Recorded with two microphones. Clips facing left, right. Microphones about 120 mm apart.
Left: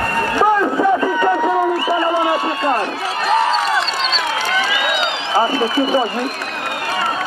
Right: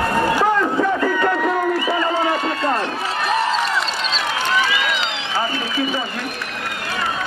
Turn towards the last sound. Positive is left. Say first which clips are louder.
# left 7 dB
turn(degrees=40)  # may be behind; listen again after turning